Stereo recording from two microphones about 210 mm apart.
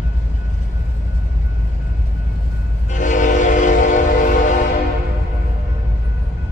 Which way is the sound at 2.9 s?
35° left (ahead or behind).